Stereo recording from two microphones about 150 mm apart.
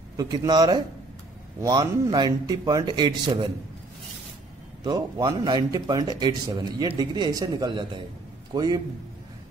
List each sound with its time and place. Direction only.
0.2 s a man's voice: 25° right (ahead or behind)
4.8 s a man's voice: 25° right (ahead or behind)